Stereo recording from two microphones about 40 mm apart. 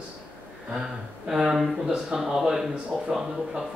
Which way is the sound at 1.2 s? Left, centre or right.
Centre.